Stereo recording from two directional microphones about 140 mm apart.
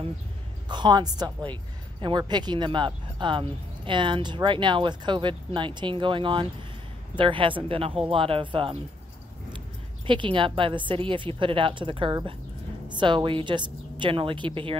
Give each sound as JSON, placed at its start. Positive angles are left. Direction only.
{"t": 0.7, "sound": "a woman's voice", "side_deg": -30}
{"t": 10.0, "sound": "a woman's voice", "side_deg": -35}